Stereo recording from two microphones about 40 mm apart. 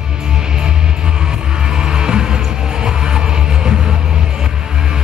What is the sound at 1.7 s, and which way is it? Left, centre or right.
Music, centre.